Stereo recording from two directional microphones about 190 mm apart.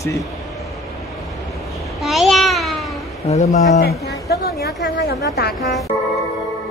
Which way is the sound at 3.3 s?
35° left (ahead or behind).